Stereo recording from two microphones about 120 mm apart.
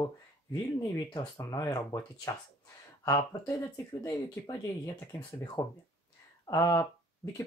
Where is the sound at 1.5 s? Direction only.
30° left (ahead or behind).